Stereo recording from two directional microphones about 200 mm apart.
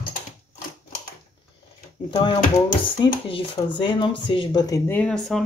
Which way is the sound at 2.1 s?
25° left (ahead or behind).